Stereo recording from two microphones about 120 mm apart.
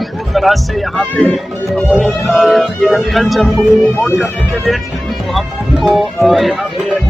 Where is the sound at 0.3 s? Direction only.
Centre (ahead or behind).